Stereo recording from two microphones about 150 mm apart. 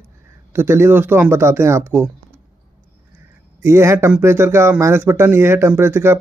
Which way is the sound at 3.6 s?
20° right (ahead or behind).